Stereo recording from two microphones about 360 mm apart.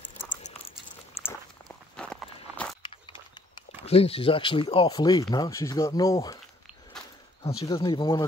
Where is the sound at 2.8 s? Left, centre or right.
Centre.